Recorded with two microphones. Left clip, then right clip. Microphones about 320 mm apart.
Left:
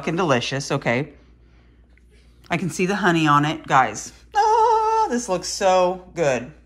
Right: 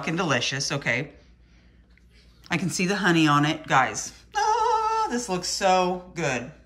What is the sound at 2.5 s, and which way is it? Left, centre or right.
Speech, centre.